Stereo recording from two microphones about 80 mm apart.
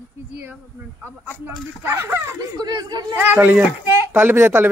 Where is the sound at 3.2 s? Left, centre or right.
Right.